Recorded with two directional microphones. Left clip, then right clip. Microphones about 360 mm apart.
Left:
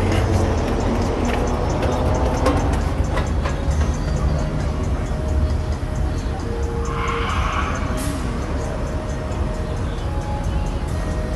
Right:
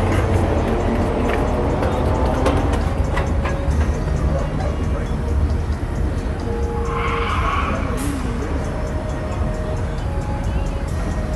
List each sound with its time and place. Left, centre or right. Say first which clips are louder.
2.4 s music: right 1 dB; centre